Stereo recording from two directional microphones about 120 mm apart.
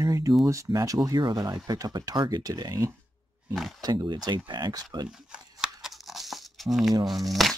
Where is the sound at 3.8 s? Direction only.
35° right (ahead or behind).